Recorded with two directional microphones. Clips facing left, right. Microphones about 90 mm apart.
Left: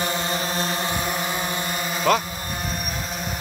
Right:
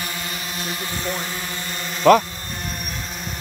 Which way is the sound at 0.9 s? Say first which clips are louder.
Left 2 dB; 20° left (ahead or behind).